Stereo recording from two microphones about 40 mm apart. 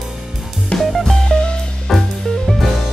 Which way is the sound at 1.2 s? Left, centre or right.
Left.